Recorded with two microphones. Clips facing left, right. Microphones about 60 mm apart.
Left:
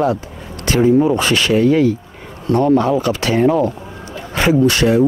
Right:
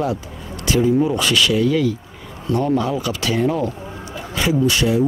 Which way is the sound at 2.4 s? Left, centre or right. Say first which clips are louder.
Left 6 dB; left.